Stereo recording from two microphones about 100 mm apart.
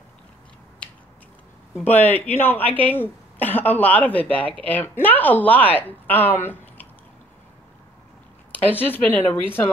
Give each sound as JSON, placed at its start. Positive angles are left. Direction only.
{"t": 1.9, "sound": "speech", "side_deg": 20}
{"t": 8.6, "sound": "speech", "side_deg": 20}